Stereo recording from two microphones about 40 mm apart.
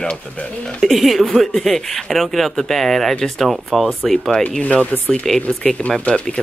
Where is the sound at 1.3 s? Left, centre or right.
Centre.